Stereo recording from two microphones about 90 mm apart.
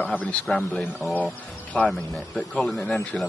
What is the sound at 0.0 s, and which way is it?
Speech, 15° left (ahead or behind).